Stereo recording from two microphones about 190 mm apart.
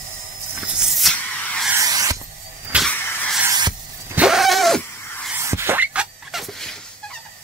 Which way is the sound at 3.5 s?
20° right (ahead or behind).